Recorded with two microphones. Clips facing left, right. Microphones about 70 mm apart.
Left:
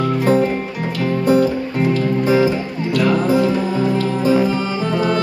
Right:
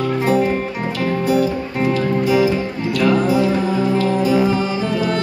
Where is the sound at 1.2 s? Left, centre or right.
Left.